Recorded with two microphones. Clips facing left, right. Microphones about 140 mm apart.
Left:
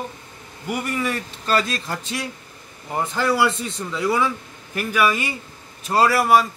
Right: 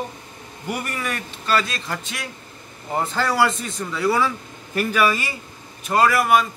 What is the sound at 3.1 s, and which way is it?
A man's voice, 15° left (ahead or behind).